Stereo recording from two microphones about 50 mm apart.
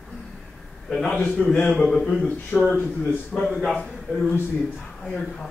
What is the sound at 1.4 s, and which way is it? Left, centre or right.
Speech, centre.